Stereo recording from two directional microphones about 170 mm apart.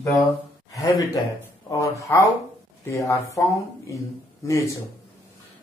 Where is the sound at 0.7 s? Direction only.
20° left (ahead or behind).